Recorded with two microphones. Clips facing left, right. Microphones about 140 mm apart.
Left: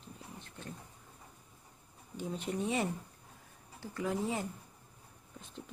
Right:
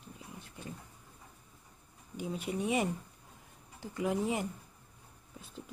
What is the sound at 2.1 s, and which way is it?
Speech, 10° right (ahead or behind).